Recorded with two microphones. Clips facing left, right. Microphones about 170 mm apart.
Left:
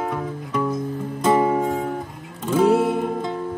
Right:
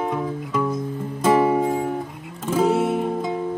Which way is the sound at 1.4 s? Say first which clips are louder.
Right 1 dB; 10° right (ahead or behind).